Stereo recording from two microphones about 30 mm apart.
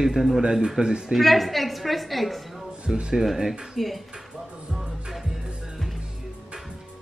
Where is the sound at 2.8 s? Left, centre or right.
Right.